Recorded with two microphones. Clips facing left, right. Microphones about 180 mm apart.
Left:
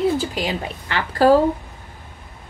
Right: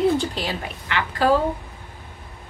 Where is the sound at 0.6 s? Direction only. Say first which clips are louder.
Left 1 dB; 35° left (ahead or behind).